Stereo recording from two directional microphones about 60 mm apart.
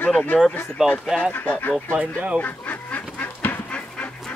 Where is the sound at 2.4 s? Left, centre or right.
Left.